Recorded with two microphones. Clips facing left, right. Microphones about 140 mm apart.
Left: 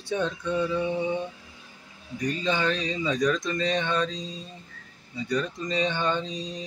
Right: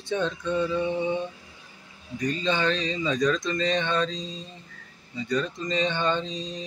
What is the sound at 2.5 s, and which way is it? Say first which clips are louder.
Speech: right 1 dB; 10° left (ahead or behind).